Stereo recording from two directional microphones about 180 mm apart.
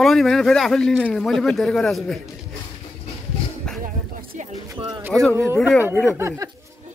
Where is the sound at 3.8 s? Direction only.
50° right (ahead or behind).